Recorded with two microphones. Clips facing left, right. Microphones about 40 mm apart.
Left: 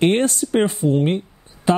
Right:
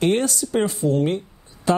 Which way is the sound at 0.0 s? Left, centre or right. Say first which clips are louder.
Left 3 dB; left.